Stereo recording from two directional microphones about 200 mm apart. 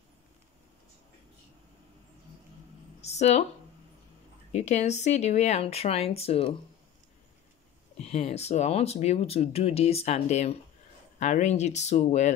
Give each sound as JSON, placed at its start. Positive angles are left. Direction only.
{"t": 3.0, "sound": "speech", "side_deg": 35}
{"t": 4.5, "sound": "speech", "side_deg": 35}
{"t": 8.0, "sound": "speech", "side_deg": 30}